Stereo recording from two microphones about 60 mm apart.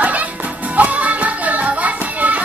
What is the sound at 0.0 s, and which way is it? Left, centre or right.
Music, right.